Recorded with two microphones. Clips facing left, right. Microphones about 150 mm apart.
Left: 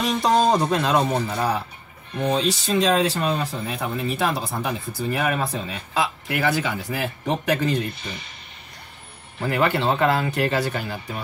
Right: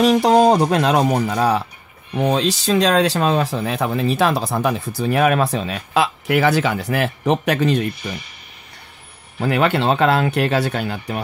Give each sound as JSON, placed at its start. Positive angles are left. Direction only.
{"t": 0.0, "sound": "speech", "side_deg": -70}
{"t": 9.4, "sound": "speech", "side_deg": -75}